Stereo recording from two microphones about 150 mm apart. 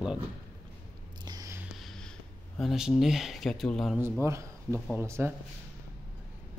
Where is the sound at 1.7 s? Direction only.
Centre (ahead or behind).